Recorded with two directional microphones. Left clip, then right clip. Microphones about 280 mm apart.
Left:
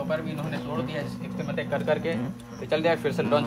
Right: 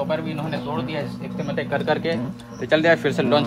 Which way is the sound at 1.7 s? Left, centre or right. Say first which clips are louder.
Right 4 dB; right.